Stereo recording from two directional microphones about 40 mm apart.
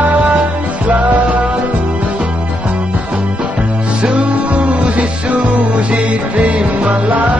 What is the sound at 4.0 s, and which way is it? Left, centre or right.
Music, right.